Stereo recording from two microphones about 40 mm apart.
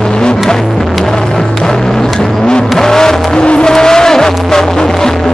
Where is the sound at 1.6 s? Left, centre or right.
Centre.